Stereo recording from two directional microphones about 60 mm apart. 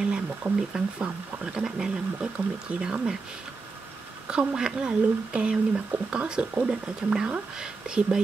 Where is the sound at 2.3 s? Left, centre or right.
Right.